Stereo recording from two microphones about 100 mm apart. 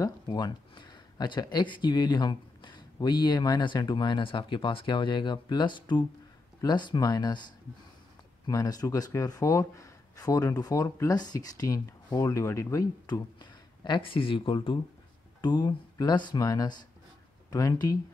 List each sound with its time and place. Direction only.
0.0 s speech: 45° left (ahead or behind); by 12.8 s 25° left (ahead or behind)
13.0 s speech: 45° left (ahead or behind)
15.4 s speech: 45° left (ahead or behind)